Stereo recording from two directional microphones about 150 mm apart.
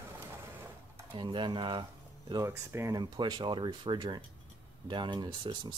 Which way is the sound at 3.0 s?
30° right (ahead or behind).